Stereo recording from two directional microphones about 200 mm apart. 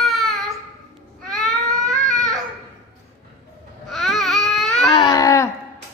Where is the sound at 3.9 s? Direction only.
Centre (ahead or behind).